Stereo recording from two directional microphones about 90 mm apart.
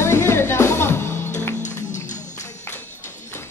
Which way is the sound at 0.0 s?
30° left (ahead or behind).